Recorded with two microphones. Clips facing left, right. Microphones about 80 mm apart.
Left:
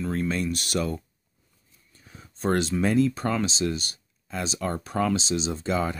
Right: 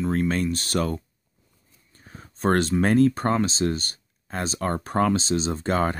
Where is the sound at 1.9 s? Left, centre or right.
Right.